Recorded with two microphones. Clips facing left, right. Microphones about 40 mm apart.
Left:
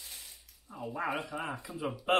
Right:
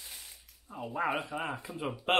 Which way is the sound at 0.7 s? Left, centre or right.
Right.